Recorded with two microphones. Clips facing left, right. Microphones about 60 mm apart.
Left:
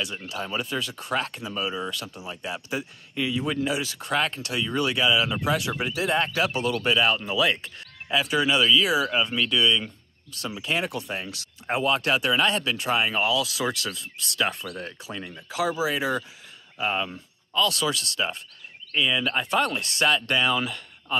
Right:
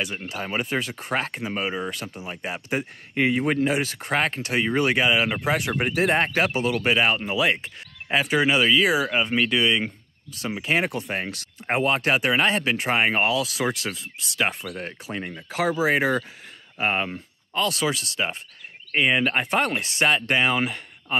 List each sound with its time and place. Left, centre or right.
0.0 s speech: right
6.5 s speech: right
14.9 s speech: right
17.6 s speech: right
18.9 s speech: right